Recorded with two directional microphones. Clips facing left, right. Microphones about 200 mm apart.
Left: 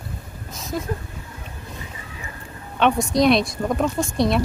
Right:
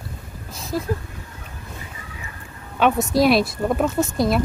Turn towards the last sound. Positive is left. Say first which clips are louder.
# right 1 dB
turn(degrees=0)  # may be behind; listen again after turning